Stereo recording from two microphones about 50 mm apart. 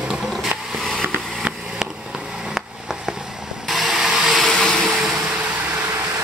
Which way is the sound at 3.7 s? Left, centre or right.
Centre.